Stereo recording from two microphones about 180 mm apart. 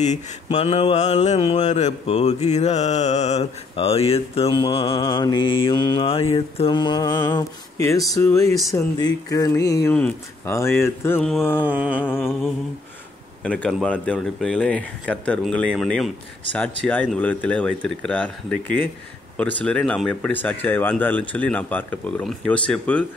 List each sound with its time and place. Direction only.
0.0 s mantra: 40° left (ahead or behind); by 8.0 s 15° left (ahead or behind)
8.1 s speech: 15° left (ahead or behind)
11.6 s mantra: 5° right (ahead or behind)
12.2 s speech: 5° right (ahead or behind)